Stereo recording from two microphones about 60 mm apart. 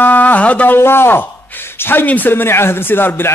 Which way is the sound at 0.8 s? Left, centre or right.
Left.